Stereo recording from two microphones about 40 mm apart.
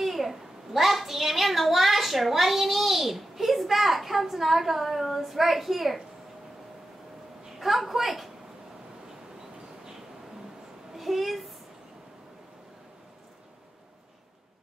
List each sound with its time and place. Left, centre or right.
0.0 s a child's voice: centre
7.5 s a child's voice: centre
10.9 s a child's voice: centre